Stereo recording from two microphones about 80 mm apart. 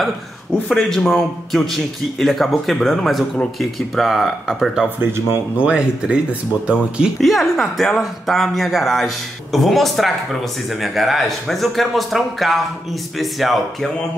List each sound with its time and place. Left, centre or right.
0.7 s a man's voice: centre
5.0 s speech: right
5.6 s speech: centre
7.2 s a man's voice: centre